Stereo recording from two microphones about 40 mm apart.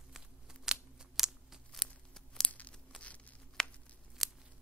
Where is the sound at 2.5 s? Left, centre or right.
Left.